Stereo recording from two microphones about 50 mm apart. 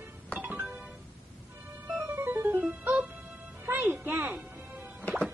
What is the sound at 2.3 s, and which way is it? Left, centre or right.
Music, right.